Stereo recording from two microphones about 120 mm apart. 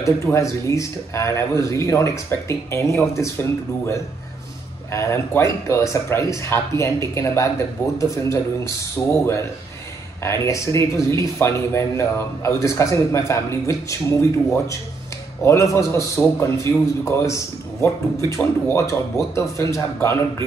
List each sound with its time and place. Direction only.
0.0 s speech: 25° left (ahead or behind)
18.4 s speech: 20° left (ahead or behind)